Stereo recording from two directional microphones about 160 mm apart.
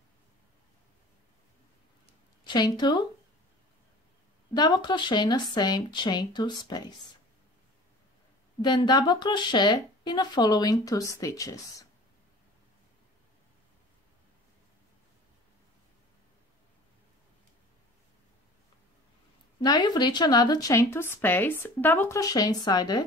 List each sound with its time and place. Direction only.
2.4 s speech: 25° left (ahead or behind)
4.6 s speech: 25° left (ahead or behind)
8.5 s speech: 25° left (ahead or behind)
19.6 s speech: 25° left (ahead or behind)